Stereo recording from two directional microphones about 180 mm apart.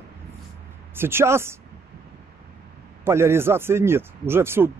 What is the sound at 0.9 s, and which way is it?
Speech, 15° right (ahead or behind).